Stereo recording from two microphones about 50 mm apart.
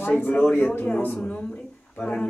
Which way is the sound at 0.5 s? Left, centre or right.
Left.